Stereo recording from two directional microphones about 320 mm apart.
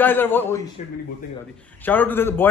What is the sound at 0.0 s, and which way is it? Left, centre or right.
Speech, centre.